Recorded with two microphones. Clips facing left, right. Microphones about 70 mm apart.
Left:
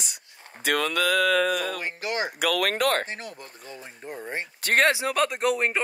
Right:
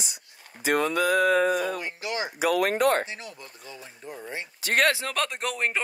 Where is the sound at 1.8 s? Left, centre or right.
Left.